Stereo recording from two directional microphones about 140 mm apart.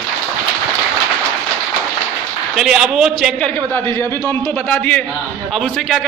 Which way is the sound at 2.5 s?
5° right (ahead or behind).